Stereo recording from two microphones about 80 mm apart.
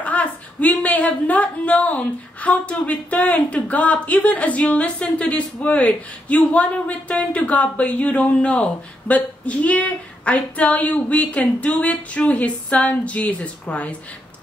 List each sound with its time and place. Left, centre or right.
0.0 s a woman's voice: centre